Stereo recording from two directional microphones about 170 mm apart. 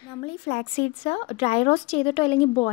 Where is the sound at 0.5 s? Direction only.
50° left (ahead or behind).